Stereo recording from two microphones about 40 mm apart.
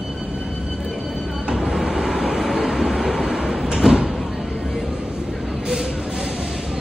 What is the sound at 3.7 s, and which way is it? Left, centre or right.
Sliding door, centre.